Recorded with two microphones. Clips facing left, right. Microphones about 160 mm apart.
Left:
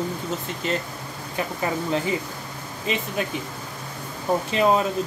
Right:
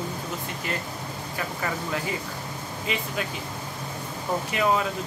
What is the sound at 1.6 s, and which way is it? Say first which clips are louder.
Speech: left 6 dB; 25° left (ahead or behind).